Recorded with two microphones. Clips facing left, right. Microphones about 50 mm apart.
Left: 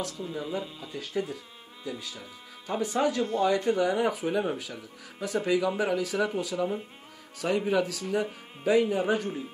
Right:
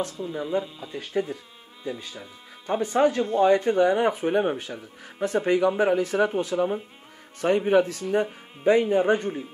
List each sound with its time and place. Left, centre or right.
0.3 s speech: centre
1.9 s a man's voice: right